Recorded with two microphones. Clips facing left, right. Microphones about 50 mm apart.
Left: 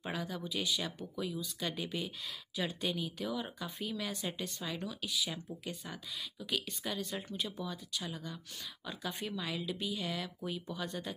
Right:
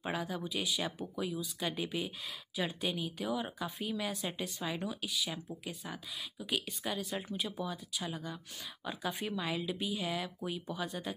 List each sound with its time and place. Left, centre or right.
0.0 s speech: centre
4.4 s speech: centre
5.1 s speech: centre